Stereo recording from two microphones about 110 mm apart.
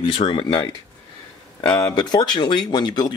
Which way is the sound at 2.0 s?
40° left (ahead or behind).